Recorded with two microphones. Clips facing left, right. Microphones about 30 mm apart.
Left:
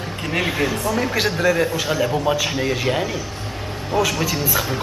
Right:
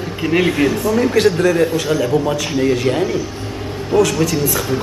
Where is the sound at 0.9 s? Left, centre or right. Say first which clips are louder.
Right 7 dB; centre.